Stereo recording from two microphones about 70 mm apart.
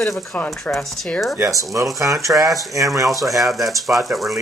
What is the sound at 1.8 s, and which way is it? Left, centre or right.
Speech, right.